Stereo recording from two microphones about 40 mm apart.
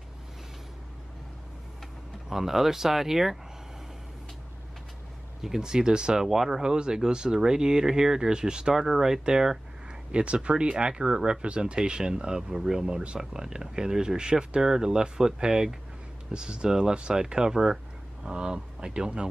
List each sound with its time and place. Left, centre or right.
2.2 s speech: centre
5.6 s speech: centre
8.7 s speech: centre
10.1 s speech: right